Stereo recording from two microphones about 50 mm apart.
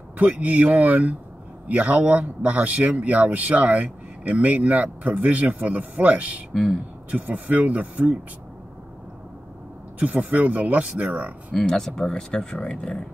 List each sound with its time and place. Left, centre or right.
0.2 s speech: right
6.5 s speech: centre
7.1 s speech: right
9.9 s speech: right
11.5 s speech: centre